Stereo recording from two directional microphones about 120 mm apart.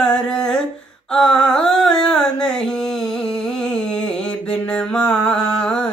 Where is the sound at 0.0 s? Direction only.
5° left (ahead or behind).